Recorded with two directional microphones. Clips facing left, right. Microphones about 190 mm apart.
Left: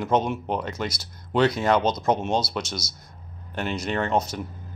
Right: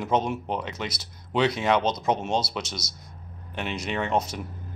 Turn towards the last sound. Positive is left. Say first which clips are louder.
# left 3 dB
turn(degrees=-5)  # may be behind; listen again after turning